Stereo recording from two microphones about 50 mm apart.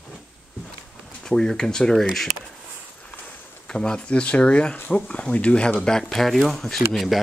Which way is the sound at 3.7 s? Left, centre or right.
Centre.